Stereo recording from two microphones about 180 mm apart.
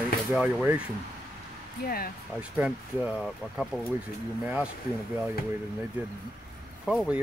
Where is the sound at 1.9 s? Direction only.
55° left (ahead or behind).